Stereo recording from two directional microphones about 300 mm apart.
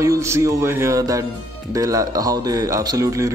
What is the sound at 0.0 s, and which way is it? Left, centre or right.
Speech, centre.